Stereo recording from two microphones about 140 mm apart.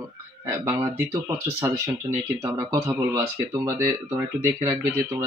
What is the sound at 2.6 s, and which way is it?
Speech, 20° right (ahead or behind).